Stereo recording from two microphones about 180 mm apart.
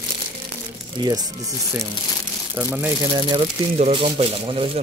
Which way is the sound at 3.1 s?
25° right (ahead or behind).